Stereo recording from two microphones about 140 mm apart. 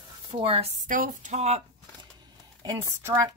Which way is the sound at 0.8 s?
70° right (ahead or behind).